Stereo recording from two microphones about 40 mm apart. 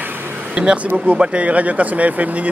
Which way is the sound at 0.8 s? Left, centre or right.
Right.